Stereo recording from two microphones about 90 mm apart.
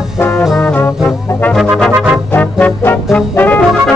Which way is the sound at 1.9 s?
10° right (ahead or behind).